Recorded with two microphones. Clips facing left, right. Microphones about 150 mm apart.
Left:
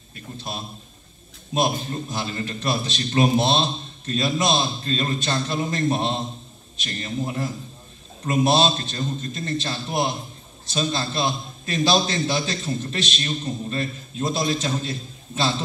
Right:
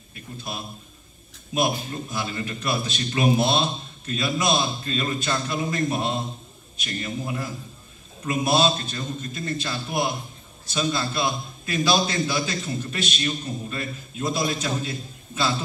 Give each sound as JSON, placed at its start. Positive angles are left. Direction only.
{"t": 0.1, "sound": "a sound", "side_deg": 30}
{"t": 1.5, "sound": "a man's voice", "side_deg": 30}
{"t": 8.5, "sound": "a man's voice", "side_deg": 30}